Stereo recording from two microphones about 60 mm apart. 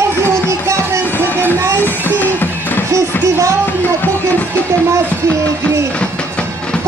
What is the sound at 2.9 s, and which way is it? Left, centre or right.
Music, right.